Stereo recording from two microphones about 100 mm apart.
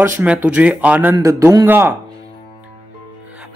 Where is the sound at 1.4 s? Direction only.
30° right (ahead or behind).